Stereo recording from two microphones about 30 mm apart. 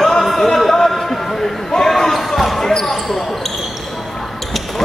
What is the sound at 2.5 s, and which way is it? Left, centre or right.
Basketball bounce, centre.